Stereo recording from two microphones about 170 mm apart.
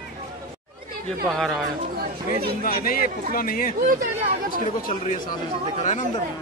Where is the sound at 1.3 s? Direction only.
5° left (ahead or behind).